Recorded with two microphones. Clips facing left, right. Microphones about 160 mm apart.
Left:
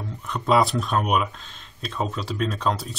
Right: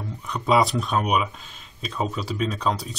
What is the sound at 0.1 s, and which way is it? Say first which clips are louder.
Speech: even; centre (ahead or behind).